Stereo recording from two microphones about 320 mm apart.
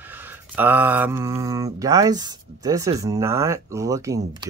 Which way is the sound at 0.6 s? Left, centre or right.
Centre.